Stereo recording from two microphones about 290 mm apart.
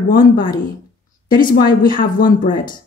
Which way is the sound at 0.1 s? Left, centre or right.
Left.